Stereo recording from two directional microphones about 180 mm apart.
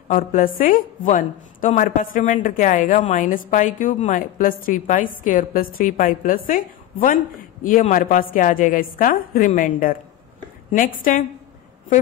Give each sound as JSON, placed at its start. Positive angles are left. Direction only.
{"t": 0.1, "sound": "a woman's voice", "side_deg": 50}